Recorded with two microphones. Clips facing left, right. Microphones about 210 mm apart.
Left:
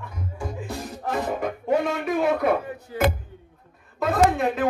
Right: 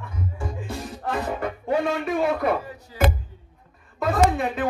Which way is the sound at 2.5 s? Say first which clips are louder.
Left 3 dB; 55° left (ahead or behind).